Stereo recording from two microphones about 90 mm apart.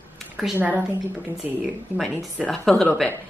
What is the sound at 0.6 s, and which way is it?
Speech, 25° right (ahead or behind).